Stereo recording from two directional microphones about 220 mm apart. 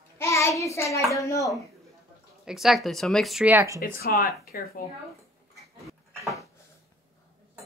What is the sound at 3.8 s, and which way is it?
Speech, 40° left (ahead or behind).